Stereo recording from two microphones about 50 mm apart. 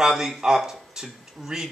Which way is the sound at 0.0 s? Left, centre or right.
Centre.